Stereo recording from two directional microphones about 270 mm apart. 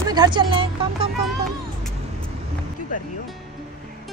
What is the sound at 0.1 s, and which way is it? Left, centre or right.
Speech, centre.